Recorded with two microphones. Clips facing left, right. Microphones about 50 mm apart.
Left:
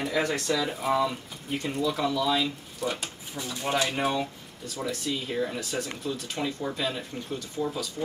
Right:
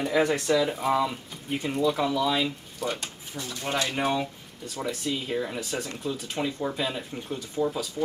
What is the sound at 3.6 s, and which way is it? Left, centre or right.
Speech, centre.